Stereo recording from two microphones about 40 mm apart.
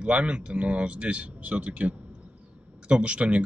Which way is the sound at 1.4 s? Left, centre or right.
Right.